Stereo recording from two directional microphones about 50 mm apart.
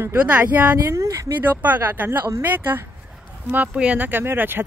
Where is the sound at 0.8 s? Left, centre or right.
Right.